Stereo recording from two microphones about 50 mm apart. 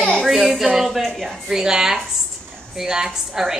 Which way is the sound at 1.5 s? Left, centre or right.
Centre.